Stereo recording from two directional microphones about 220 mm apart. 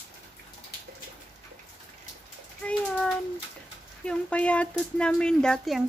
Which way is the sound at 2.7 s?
5° left (ahead or behind).